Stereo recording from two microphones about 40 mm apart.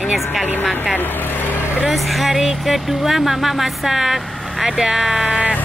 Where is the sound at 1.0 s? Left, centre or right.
Left.